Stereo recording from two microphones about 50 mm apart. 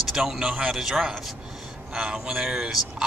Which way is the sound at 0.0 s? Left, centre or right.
Centre.